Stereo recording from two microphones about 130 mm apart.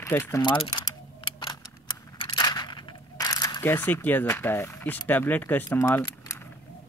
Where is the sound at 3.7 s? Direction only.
15° left (ahead or behind).